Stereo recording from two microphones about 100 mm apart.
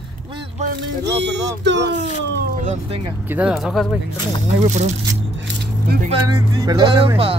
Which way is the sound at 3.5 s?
Centre (ahead or behind).